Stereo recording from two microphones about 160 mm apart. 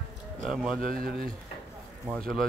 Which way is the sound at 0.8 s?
60° right (ahead or behind).